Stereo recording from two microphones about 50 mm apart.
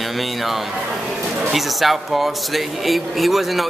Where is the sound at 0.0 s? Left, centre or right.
Centre.